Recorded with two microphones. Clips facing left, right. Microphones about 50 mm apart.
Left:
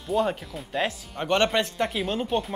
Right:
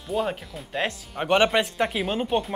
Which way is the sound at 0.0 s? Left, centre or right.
Centre.